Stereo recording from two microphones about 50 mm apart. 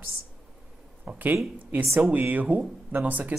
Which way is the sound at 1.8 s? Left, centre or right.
Right.